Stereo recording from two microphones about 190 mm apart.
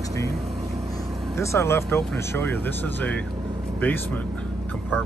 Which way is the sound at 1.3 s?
15° left (ahead or behind).